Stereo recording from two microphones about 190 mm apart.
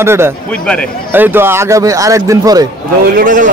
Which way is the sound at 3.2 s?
45° right (ahead or behind).